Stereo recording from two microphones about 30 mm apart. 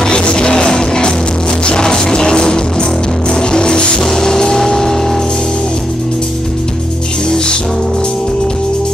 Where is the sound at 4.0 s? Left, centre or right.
Centre.